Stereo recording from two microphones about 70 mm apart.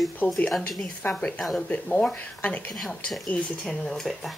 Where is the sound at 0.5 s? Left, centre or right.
Centre.